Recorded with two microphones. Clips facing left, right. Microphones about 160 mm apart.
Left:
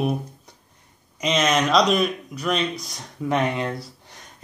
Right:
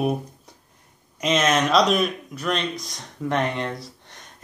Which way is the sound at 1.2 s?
Centre (ahead or behind).